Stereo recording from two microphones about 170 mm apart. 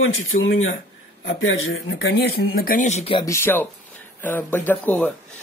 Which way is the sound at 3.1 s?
15° left (ahead or behind).